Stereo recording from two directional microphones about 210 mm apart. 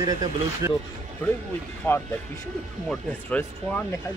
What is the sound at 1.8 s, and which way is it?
Speech, 10° left (ahead or behind).